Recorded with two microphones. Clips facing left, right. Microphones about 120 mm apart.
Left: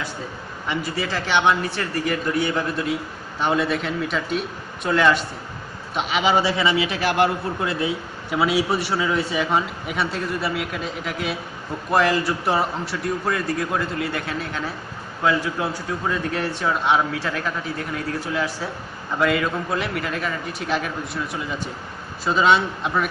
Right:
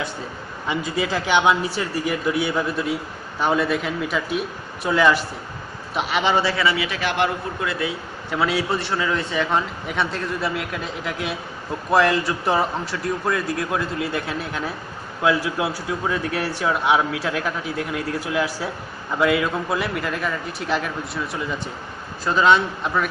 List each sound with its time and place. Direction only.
0.7 s a man's voice: 15° right (ahead or behind); by 6.3 s centre (ahead or behind)
6.3 s a man's voice: 15° left (ahead or behind)
8.3 s a man's voice: 10° left (ahead or behind)